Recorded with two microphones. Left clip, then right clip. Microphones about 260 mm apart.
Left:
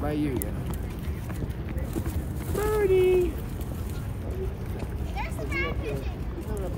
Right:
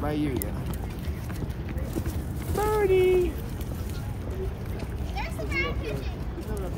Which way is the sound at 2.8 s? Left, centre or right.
Right.